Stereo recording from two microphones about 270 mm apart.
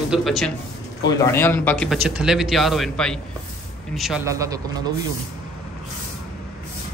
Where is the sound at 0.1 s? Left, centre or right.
Centre.